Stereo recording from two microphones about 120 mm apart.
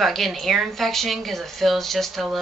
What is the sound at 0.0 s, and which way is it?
Speech, centre (ahead or behind).